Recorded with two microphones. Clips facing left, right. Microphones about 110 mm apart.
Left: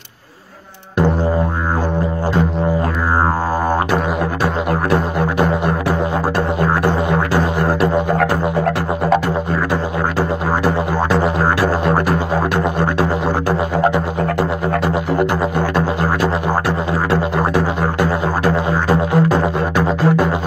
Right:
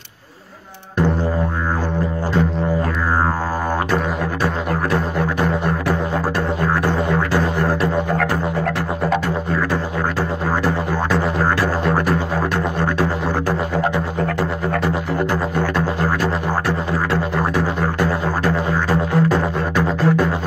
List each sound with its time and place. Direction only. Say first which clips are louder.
4.8 s music: left 2 dB; 15° left (ahead or behind)
10.6 s music: left 3 dB; 15° left (ahead or behind)
17.9 s music: left 2 dB; 15° left (ahead or behind)